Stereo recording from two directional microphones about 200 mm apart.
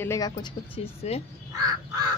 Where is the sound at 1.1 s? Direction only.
30° left (ahead or behind).